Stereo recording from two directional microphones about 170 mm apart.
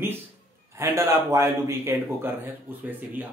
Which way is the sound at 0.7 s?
15° right (ahead or behind).